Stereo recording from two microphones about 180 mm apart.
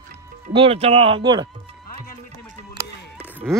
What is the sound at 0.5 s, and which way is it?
Speech, 30° right (ahead or behind).